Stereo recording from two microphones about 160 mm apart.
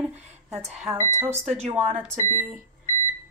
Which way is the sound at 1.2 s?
40° right (ahead or behind).